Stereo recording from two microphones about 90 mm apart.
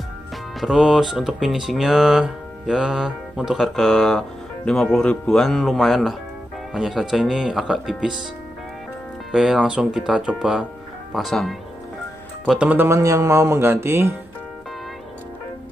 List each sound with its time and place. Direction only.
0.6 s speech: 5° right (ahead or behind)
9.3 s speech: 5° right (ahead or behind)
11.1 s speech: centre (ahead or behind)
12.5 s speech: 15° right (ahead or behind)
12.8 s speech: 35° right (ahead or behind)